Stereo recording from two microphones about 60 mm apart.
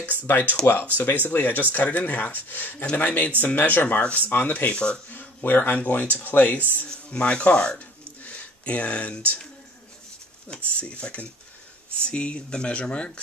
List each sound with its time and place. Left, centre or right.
0.3 s speech: left
4.6 s speech: centre
5.1 s speech: left; by 7.8 s centre
8.2 s a sound: left
10.5 s speech: centre